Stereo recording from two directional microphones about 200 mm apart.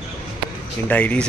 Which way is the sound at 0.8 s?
10° left (ahead or behind).